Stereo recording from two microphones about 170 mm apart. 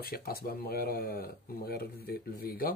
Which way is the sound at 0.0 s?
60° left (ahead or behind).